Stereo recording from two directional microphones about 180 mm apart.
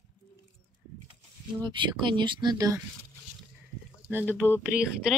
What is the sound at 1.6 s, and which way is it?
Speech, 25° right (ahead or behind).